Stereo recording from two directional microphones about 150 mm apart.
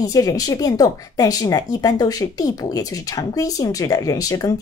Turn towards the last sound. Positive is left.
turn(degrees=25)  # may be behind; listen again after turning